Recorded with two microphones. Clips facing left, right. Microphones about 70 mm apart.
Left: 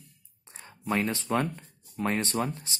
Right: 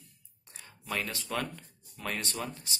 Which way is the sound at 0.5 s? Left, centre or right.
Left.